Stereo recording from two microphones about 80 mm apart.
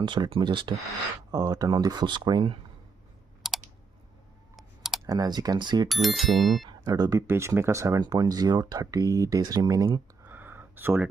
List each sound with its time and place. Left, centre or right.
0.0 s speech: right
1.3 s speech: right
3.4 s typing: centre
4.6 s clicking: centre
5.0 s speech: right
5.9 s speech: centre
6.7 s speech: right
7.2 s speech: right
8.0 s speech: right
10.2 s a sound: right